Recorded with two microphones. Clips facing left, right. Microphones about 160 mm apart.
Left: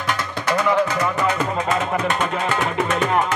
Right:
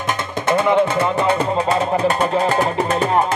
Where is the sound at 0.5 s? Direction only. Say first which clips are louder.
Right 4 dB; 25° right (ahead or behind).